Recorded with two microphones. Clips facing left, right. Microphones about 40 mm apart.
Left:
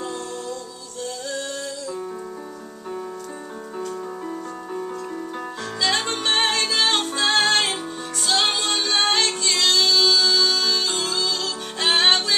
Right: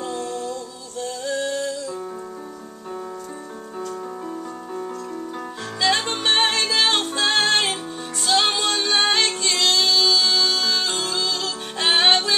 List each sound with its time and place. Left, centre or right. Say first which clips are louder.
0.2 s music: right 3 dB; centre
5.8 s music: right 2 dB; centre